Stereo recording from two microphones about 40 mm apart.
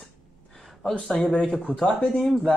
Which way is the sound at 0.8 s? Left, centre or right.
Centre.